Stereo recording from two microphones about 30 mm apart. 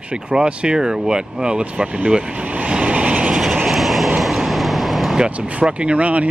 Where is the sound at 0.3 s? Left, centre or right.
Right.